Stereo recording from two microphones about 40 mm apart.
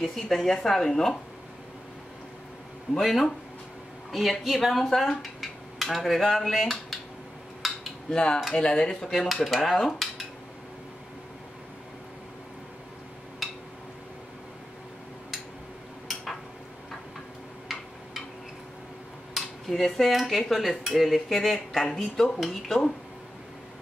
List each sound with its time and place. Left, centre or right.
0.0 s speech: centre
3.0 s a woman's voice: centre
5.2 s dishes: centre
6.4 s a sound: centre
7.6 s cutlery: centre
8.1 s speech: left
9.3 s a woman's voice: centre
16.1 s a sound: centre
19.4 s dishes: centre
19.7 s a woman's voice: centre
21.8 s speech: centre